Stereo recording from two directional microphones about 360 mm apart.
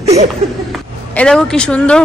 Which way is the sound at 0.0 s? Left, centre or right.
Centre.